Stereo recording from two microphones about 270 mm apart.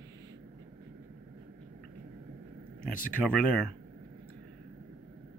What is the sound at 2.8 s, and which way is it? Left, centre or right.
Speech, left.